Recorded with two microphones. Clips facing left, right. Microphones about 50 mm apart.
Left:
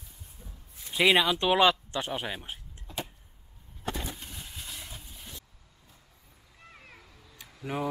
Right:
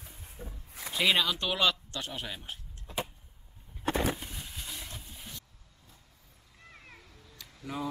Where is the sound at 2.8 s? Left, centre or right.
Centre.